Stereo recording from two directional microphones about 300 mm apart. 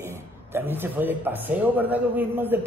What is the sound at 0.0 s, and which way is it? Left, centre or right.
Speech, centre.